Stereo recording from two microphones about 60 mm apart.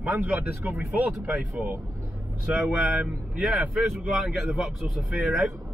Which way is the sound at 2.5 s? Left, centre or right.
Centre.